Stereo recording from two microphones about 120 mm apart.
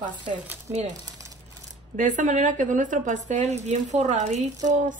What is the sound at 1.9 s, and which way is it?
Speech, 90° right.